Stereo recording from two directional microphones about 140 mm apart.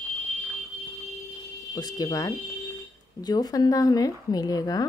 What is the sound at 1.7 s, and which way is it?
Speech, 30° left (ahead or behind).